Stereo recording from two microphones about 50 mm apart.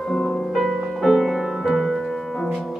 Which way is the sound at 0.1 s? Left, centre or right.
Centre.